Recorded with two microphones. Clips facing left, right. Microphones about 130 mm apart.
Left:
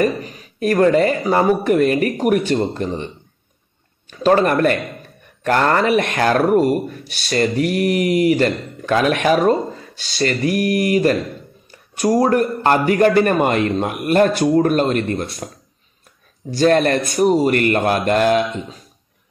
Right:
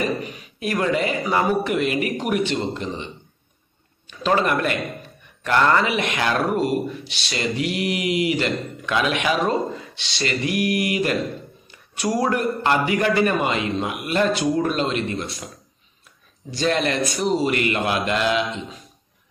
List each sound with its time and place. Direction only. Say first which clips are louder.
0.0 s mantra: left 6 dB; 35° left (ahead or behind)
0.6 s speech: left 8 dB; 45° left (ahead or behind)
2.3 s mantra: left 5 dB; 35° left (ahead or behind)
2.6 s speech: left 5 dB; 50° left (ahead or behind)
4.1 s speech: left 6 dB; 45° left (ahead or behind)
10.2 s mantra: left 5 dB; 30° left (ahead or behind)
10.8 s speech: left 7 dB; 45° left (ahead or behind)
11.7 s a sound: left 7 dB; 45° left (ahead or behind)
12.3 s speech: left 5 dB; 45° left (ahead or behind)
16.5 s speech: left 7 dB; 50° left (ahead or behind)